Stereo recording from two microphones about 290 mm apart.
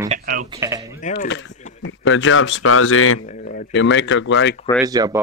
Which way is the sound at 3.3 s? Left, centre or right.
Left.